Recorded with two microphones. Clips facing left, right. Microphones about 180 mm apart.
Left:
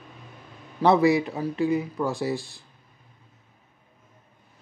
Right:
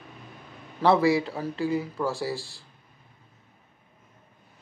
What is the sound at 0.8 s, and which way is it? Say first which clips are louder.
Speech: left 2 dB; 20° left (ahead or behind).